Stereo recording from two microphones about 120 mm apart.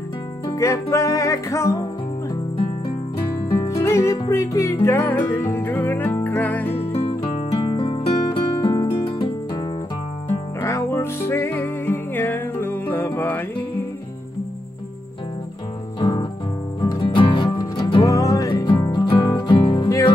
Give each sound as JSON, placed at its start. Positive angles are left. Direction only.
{"t": 0.5, "sound": "music", "side_deg": 25}
{"t": 3.5, "sound": "music", "side_deg": 25}
{"t": 6.9, "sound": "music", "side_deg": 55}
{"t": 10.6, "sound": "music", "side_deg": 20}
{"t": 16.0, "sound": "music", "side_deg": 35}
{"t": 18.0, "sound": "music", "side_deg": 30}